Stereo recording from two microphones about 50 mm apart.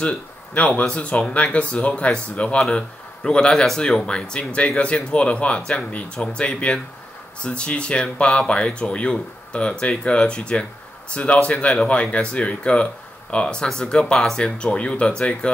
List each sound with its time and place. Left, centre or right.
0.6 s speech: left